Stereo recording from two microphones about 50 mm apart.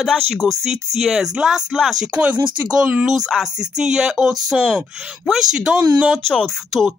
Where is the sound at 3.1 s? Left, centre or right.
Centre.